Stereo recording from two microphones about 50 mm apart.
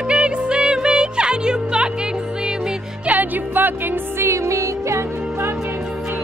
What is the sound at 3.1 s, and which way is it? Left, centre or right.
Music, right.